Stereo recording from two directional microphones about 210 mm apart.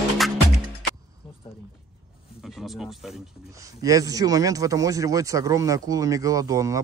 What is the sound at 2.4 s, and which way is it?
Speech, centre (ahead or behind).